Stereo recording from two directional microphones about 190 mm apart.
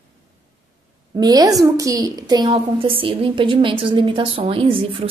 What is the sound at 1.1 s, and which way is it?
A woman's voice, 20° right (ahead or behind).